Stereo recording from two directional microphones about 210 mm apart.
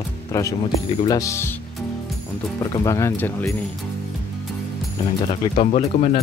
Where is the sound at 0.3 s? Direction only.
15° left (ahead or behind).